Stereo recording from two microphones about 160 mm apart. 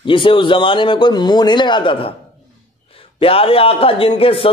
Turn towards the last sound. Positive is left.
turn(degrees=35)  # may be behind; listen again after turning